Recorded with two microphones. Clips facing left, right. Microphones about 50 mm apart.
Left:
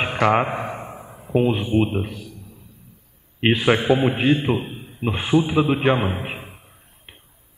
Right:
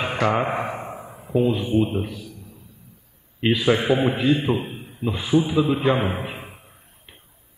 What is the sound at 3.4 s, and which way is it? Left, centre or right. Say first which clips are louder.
Speech: left 2 dB; left.